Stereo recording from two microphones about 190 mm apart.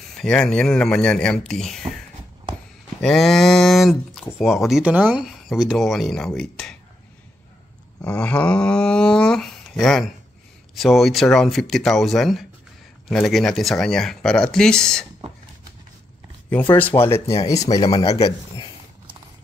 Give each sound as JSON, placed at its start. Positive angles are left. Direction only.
{"t": 0.1, "sound": "speech", "side_deg": 5}
{"t": 3.0, "sound": "speech", "side_deg": 0}
{"t": 8.0, "sound": "speech", "side_deg": 5}
{"t": 16.7, "sound": "speech", "side_deg": 10}
{"t": 18.1, "sound": "a man's voice", "side_deg": 30}